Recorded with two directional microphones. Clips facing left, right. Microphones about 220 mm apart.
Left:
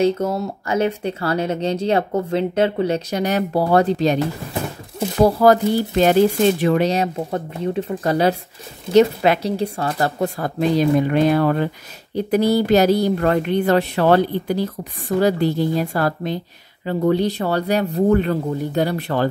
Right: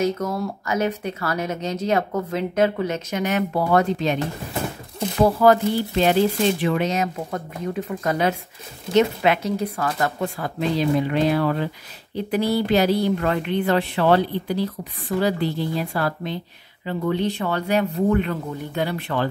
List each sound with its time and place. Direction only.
0.0 s speech: 25° left (ahead or behind)
5.2 s a woman's voice: 40° left (ahead or behind)